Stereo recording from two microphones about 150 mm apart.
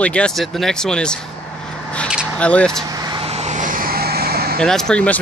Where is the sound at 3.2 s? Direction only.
45° right (ahead or behind); by 4.5 s 90° right.